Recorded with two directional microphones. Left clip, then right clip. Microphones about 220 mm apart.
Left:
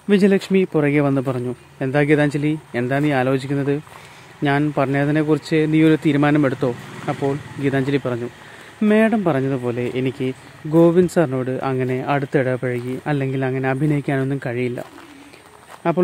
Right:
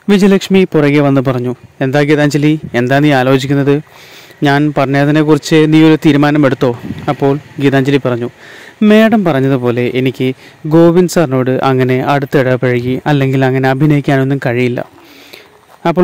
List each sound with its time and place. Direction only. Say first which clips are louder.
0.1 s speech: right 7 dB; 45° right (ahead or behind)